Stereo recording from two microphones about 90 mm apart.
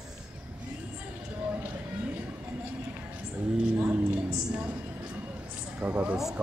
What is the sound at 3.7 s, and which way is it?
Speech, 20° right (ahead or behind).